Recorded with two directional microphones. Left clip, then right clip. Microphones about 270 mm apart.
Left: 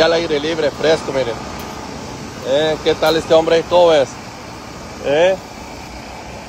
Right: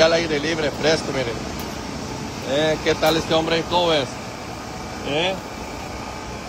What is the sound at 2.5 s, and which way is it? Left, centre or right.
Speech, centre.